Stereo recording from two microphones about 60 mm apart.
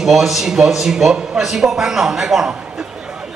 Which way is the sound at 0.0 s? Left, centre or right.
Centre.